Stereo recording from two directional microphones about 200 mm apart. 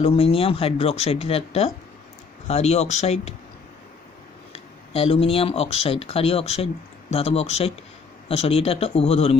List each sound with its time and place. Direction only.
0.0 s speech: 30° left (ahead or behind)
4.5 s speech: 30° left (ahead or behind)